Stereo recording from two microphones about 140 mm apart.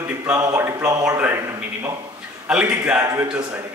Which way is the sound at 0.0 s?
20° right (ahead or behind).